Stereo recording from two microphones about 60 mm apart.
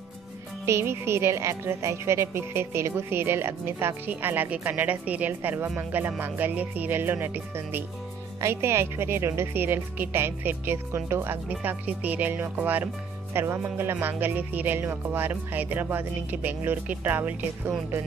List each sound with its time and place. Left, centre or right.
0.7 s a woman's voice: right
11.6 s speech: right
17.0 s speech: right